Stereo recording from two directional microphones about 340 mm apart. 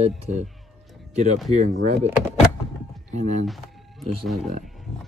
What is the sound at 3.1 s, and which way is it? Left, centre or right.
Speech, centre.